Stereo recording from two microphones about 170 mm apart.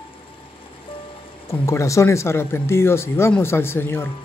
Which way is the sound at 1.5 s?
15° left (ahead or behind).